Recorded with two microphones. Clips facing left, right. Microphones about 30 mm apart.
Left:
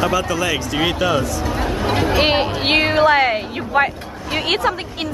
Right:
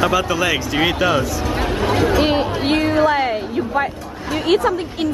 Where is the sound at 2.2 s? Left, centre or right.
Left.